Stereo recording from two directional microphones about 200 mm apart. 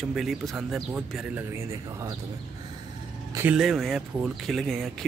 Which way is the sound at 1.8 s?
15° right (ahead or behind).